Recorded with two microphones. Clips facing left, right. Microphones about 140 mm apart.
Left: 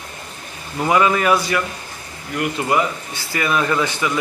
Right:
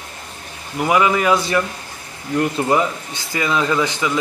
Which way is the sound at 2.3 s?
30° right (ahead or behind).